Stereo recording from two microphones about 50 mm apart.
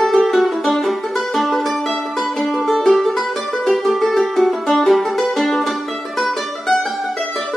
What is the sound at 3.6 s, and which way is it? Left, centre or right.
Music, centre.